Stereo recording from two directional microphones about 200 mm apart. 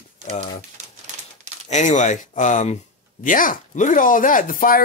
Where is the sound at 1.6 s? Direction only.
35° left (ahead or behind).